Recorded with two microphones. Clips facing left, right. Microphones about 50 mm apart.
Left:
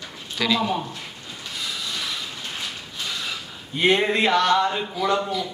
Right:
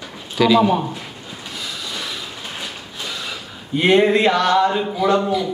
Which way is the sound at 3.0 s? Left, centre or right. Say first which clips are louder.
Right 1 dB; centre.